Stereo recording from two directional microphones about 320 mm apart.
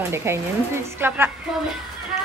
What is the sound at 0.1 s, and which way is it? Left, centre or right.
Speech, centre.